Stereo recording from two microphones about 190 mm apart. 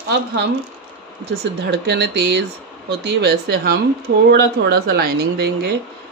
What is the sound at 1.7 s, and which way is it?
Speech, 60° right (ahead or behind).